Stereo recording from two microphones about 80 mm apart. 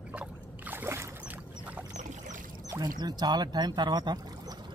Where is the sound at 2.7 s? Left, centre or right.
Right.